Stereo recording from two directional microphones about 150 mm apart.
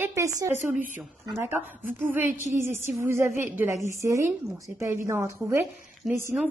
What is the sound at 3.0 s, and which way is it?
A woman's voice, 15° right (ahead or behind).